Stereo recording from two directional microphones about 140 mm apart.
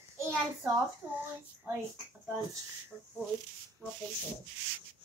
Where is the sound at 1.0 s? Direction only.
10° right (ahead or behind).